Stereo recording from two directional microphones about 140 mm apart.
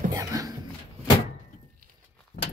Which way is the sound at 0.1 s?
25° right (ahead or behind).